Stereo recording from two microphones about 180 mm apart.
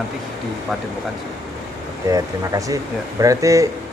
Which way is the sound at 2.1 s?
20° right (ahead or behind).